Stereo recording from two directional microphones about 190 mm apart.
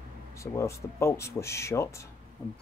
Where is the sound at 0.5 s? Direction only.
15° left (ahead or behind).